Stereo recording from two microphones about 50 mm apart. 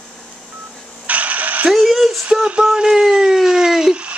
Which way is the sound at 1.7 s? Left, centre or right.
Centre.